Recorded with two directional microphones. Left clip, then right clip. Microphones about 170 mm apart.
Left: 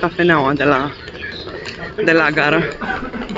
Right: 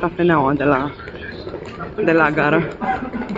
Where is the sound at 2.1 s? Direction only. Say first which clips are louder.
Left 2 dB; 10° right (ahead or behind).